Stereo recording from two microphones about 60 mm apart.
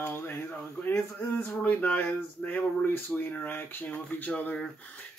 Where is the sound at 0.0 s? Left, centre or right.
Left.